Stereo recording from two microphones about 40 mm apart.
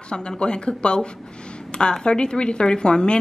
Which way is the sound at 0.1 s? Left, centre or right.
Left.